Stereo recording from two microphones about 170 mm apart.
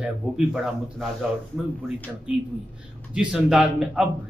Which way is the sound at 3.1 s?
Centre (ahead or behind).